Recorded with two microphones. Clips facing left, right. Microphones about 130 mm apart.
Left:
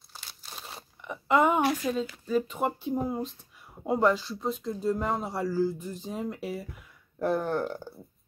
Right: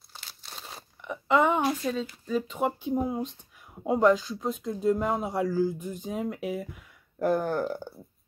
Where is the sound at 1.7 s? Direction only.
5° left (ahead or behind).